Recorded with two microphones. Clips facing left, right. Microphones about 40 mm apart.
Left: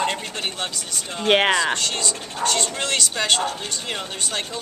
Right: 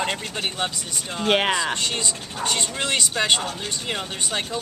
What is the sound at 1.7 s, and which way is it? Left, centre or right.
Speech, centre.